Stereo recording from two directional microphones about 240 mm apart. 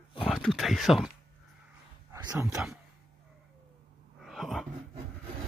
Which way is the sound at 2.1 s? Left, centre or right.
Centre.